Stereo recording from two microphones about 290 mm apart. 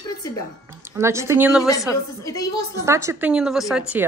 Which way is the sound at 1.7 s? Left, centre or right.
Centre.